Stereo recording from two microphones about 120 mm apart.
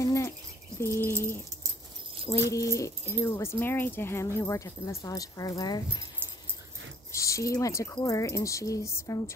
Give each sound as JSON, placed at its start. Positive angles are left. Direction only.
{"t": 0.0, "sound": "a sound", "side_deg": 25}
{"t": 0.7, "sound": "speech", "side_deg": 20}
{"t": 7.1, "sound": "speech", "side_deg": 25}